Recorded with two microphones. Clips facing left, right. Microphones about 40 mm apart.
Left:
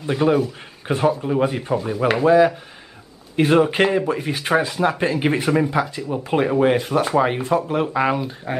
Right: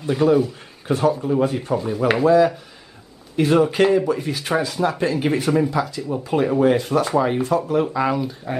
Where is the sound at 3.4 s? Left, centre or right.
Left.